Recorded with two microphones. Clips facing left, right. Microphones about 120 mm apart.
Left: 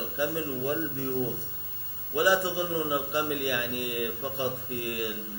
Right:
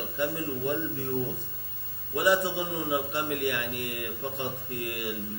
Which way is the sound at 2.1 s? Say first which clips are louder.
Even; centre (ahead or behind).